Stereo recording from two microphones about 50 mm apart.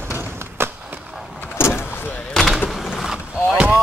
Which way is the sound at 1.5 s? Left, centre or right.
Left.